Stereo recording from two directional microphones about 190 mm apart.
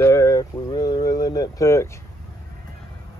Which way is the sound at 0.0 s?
15° left (ahead or behind).